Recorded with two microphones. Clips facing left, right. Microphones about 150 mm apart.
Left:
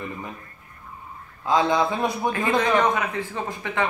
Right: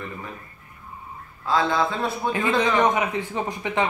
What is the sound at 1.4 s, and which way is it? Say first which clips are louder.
Speech: left 1 dB; 15° left (ahead or behind).